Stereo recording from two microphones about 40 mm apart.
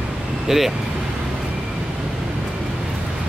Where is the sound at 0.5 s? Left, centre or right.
Centre.